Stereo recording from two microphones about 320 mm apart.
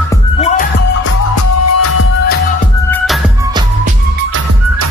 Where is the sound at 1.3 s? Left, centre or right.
Left.